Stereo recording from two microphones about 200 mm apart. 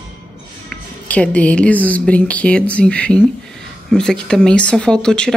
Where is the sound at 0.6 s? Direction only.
5° left (ahead or behind).